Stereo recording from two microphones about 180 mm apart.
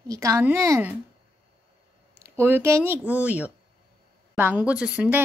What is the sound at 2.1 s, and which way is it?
Speech, 15° right (ahead or behind).